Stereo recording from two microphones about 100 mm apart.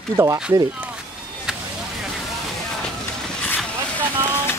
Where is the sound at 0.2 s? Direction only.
35° right (ahead or behind).